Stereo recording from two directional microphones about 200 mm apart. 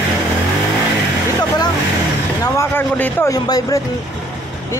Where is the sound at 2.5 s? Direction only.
10° left (ahead or behind).